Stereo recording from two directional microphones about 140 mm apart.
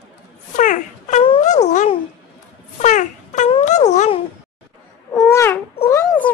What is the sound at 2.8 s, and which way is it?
Wail, 60° left (ahead or behind).